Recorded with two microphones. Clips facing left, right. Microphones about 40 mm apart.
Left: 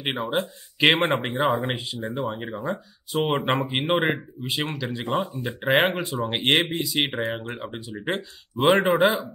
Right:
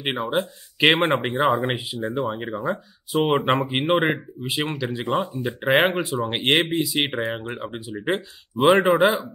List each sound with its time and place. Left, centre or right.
0.0 s speech: centre